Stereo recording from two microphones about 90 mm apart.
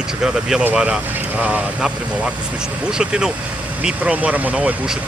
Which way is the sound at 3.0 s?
5° right (ahead or behind).